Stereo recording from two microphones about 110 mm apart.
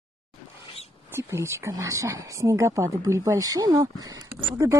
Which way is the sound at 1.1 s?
25° right (ahead or behind).